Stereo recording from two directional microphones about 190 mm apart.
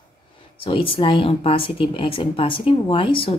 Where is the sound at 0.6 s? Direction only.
30° left (ahead or behind).